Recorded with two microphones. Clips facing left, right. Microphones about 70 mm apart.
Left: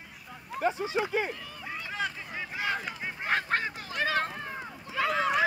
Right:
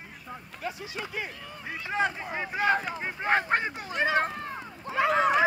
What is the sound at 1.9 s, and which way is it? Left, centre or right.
Speech, right.